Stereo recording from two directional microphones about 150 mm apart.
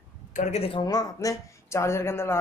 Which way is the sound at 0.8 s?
25° left (ahead or behind).